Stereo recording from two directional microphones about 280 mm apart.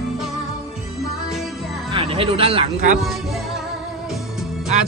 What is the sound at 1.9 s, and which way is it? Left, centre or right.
Music, centre.